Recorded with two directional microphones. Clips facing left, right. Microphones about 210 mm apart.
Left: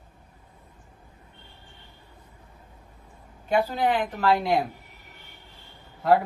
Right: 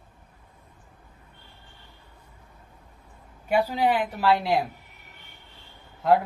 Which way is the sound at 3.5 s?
10° right (ahead or behind).